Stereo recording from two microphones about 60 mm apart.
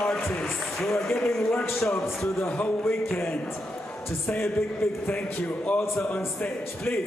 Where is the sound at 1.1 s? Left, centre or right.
Centre.